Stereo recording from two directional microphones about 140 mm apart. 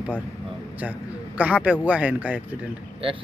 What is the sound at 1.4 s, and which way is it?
Speech, 10° right (ahead or behind).